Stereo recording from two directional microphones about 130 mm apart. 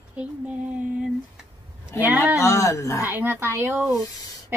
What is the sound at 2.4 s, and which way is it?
Speech, 25° left (ahead or behind).